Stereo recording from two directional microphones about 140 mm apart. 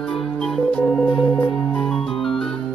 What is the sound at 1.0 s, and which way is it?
Music, 35° left (ahead or behind).